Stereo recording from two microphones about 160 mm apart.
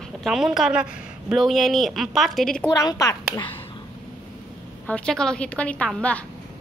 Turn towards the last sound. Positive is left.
turn(degrees=10)  # may be behind; listen again after turning